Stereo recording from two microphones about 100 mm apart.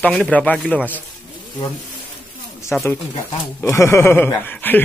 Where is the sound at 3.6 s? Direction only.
25° left (ahead or behind).